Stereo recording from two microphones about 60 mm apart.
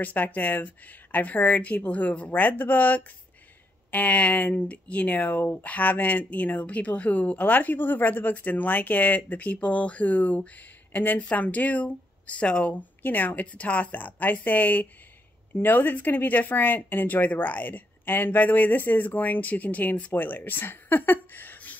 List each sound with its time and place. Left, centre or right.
0.0 s speech: left
13.0 s speech: left